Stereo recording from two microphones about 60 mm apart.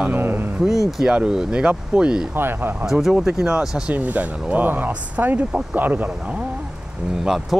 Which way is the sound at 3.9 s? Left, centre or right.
Right.